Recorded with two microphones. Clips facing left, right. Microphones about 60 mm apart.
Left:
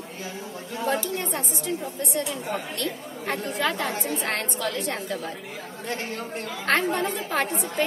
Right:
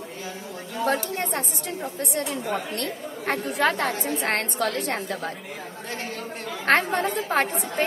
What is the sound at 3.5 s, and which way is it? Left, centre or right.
Speech, right.